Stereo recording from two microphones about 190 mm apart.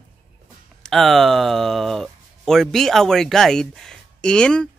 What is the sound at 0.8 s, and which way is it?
Speech, centre (ahead or behind).